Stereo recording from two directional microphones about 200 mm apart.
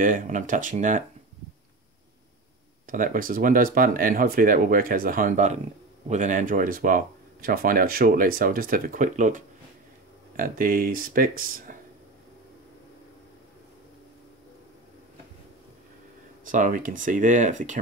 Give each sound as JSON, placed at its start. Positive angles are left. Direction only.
{"t": 0.0, "sound": "speech", "side_deg": -40}
{"t": 2.9, "sound": "speech", "side_deg": -45}
{"t": 16.4, "sound": "speech", "side_deg": -40}